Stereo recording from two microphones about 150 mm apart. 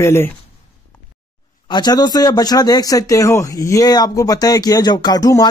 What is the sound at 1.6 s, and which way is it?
Speech, 30° left (ahead or behind).